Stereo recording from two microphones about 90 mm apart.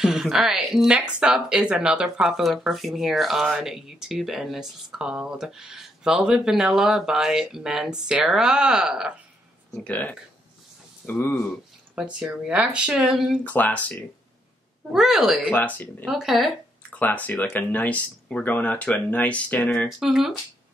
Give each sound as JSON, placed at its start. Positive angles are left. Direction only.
{"t": 0.0, "sound": "speech", "side_deg": -5}
{"t": 9.8, "sound": "speech", "side_deg": 15}
{"t": 11.9, "sound": "speech", "side_deg": -10}
{"t": 13.5, "sound": "speech", "side_deg": 20}
{"t": 14.9, "sound": "speech", "side_deg": -5}
{"t": 15.5, "sound": "speech", "side_deg": 20}
{"t": 16.1, "sound": "speech", "side_deg": -5}
{"t": 16.9, "sound": "speech", "side_deg": 15}
{"t": 20.0, "sound": "speech", "side_deg": -5}